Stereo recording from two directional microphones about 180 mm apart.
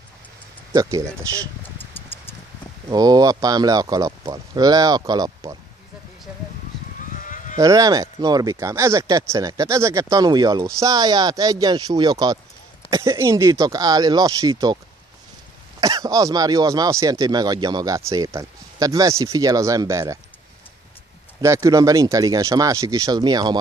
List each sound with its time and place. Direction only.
0.7 s speech: 15° right (ahead or behind)
2.0 s vehicle: 10° left (ahead or behind)
2.9 s speech: 20° right (ahead or behind)
7.2 s sheep: 45° left (ahead or behind)
7.5 s speech: 20° right (ahead or behind)
15.8 s speech: 20° right (ahead or behind)
21.4 s speech: 15° right (ahead or behind)